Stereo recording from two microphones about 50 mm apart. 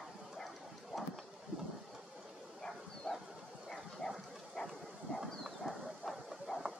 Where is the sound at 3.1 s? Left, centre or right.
Centre.